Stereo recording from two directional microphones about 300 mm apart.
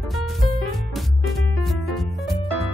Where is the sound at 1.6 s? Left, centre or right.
Centre.